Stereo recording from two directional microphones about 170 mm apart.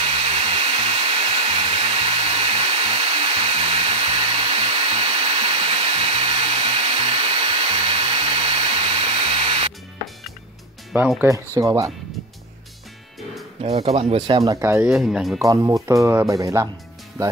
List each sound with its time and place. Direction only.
0.0 s hair dryer: 35° right (ahead or behind)
10.9 s speech: 10° right (ahead or behind)
13.6 s speech: 35° right (ahead or behind); by 14.9 s 15° right (ahead or behind)
14.9 s speech: 5° right (ahead or behind)
15.3 s speech: 20° right (ahead or behind)